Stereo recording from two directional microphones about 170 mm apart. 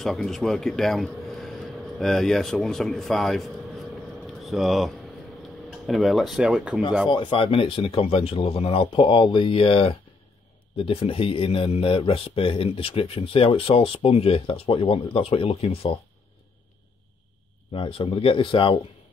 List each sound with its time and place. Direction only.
0.0 s a man's voice: centre (ahead or behind)
7.1 s speech: 30° left (ahead or behind)
17.7 s speech: 30° left (ahead or behind)